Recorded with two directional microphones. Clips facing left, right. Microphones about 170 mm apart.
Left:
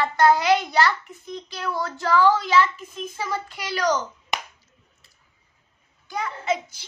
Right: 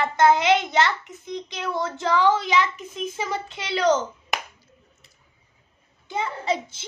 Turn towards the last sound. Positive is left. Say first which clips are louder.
# even
turn(degrees=-30)  # may be behind; listen again after turning